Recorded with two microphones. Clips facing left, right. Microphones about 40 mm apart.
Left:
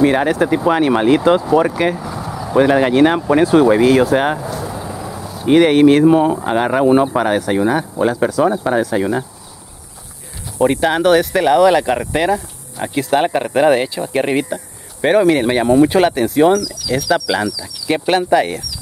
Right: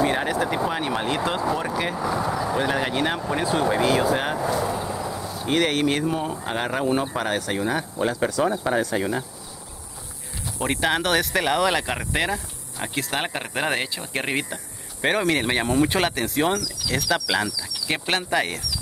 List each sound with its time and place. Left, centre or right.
0.0 s speech: left
0.3 s speech: centre
0.7 s speech: left
1.0 s speech: centre
2.0 s vehicle: centre
2.5 s speech: left
4.5 s a sound: centre
5.5 s speech: centre
6.4 s speech: centre
10.6 s speech: centre
16.6 s speech: centre
16.9 s speech: centre